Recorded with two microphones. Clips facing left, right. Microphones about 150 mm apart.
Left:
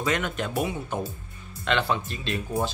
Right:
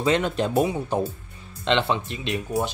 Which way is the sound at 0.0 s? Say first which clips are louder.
Right 5 dB; 30° right (ahead or behind).